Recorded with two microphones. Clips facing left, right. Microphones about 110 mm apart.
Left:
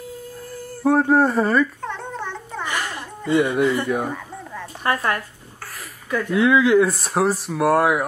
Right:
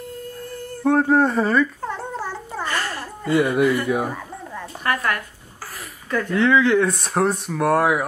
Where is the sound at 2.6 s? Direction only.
15° left (ahead or behind).